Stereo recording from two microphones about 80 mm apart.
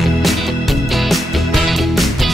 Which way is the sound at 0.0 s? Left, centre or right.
Centre.